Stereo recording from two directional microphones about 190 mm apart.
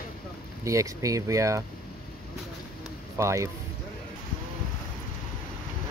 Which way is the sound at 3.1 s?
15° right (ahead or behind).